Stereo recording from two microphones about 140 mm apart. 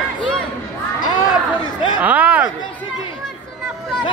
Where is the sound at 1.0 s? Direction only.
30° left (ahead or behind).